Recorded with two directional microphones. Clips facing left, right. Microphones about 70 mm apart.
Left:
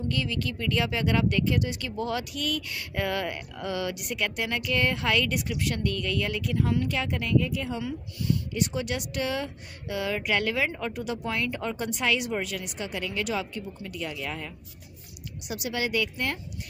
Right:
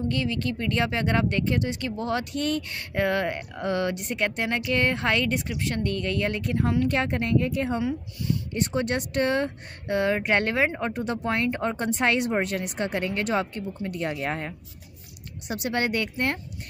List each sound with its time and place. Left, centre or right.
0.1 s speech: right